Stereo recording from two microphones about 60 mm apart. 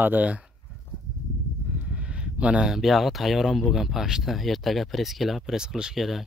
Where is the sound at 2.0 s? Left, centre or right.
Centre.